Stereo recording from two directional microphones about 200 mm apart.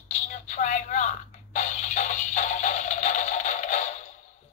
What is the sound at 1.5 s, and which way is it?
Music, 35° left (ahead or behind).